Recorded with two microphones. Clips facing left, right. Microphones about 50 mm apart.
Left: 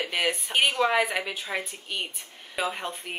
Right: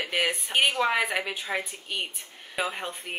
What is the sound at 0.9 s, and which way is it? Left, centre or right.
Speech, centre.